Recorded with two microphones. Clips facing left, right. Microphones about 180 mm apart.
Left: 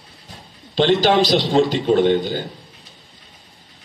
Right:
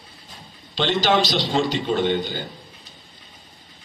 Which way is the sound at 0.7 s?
45° left (ahead or behind).